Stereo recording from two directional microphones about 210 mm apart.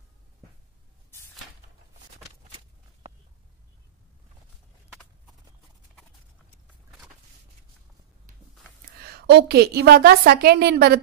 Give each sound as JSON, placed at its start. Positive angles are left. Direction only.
{"t": 8.9, "sound": "a woman's voice", "side_deg": -50}